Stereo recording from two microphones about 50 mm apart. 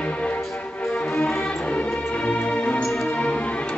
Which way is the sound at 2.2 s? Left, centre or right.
Left.